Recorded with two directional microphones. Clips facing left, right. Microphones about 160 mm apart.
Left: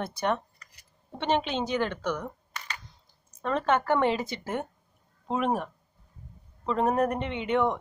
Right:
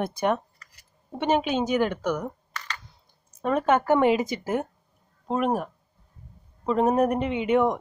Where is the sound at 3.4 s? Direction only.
10° right (ahead or behind).